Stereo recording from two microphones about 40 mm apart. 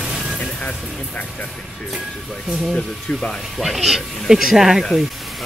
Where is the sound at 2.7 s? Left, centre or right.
Centre.